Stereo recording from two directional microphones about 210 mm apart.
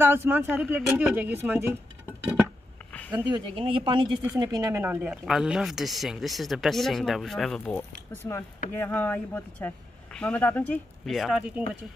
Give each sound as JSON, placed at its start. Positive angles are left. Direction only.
{"t": 0.0, "sound": "a woman's voice", "side_deg": -10}
{"t": 3.3, "sound": "speech", "side_deg": -25}
{"t": 4.2, "sound": "speech", "side_deg": -15}